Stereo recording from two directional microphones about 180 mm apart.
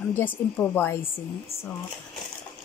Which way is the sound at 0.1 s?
10° left (ahead or behind).